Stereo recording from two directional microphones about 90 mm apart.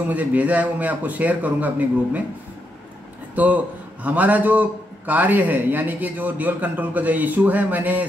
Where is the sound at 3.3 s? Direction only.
15° right (ahead or behind).